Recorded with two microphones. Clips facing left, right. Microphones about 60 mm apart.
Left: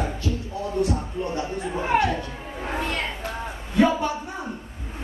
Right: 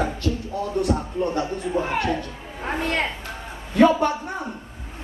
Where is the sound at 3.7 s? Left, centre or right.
Right.